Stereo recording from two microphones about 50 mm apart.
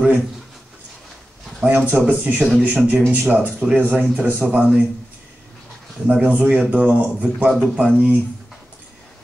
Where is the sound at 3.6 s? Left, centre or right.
Right.